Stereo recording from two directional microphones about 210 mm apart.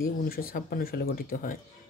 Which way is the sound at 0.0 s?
45° left (ahead or behind).